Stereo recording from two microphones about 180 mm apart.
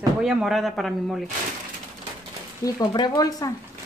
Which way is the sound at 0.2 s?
5° right (ahead or behind).